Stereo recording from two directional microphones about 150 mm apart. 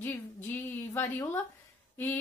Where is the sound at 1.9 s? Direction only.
15° left (ahead or behind).